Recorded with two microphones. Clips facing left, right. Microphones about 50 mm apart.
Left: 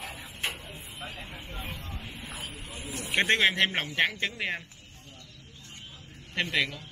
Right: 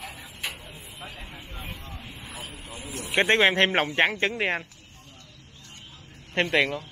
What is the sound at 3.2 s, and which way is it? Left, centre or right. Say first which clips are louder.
Speech: right 4 dB; right.